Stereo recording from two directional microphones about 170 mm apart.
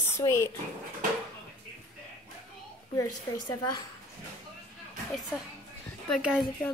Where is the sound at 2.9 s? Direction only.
20° left (ahead or behind).